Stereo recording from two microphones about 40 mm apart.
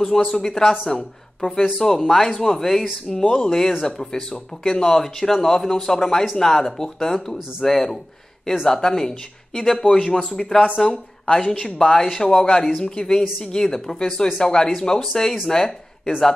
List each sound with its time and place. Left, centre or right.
0.3 s speech: centre